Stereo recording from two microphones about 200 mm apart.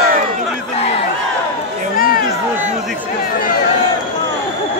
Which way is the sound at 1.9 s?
45° left (ahead or behind).